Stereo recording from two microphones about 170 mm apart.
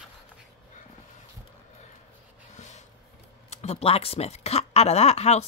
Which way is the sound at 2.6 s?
45° left (ahead or behind).